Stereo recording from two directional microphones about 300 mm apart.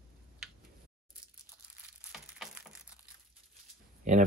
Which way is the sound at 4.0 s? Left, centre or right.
Right.